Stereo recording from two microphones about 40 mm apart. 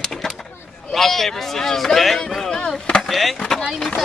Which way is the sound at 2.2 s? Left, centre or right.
Centre.